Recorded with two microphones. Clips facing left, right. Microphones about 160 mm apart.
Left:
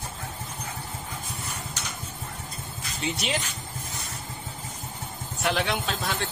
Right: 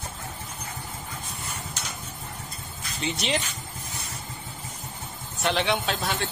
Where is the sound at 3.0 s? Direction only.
Centre (ahead or behind).